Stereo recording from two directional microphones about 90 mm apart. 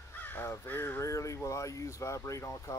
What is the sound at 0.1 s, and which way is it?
Crow, 20° left (ahead or behind).